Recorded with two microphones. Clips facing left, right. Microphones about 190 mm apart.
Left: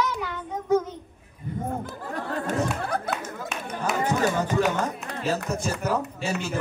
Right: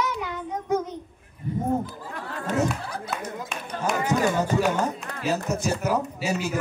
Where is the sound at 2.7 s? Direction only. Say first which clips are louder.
Left 6 dB; 55° left (ahead or behind).